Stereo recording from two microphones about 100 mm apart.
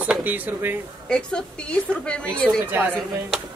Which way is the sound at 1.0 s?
10° left (ahead or behind).